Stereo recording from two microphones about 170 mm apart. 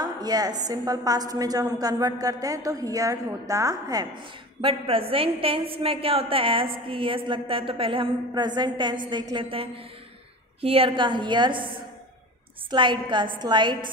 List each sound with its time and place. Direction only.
0.0 s a woman's voice: 20° right (ahead or behind)
12.7 s a woman's voice: 30° right (ahead or behind)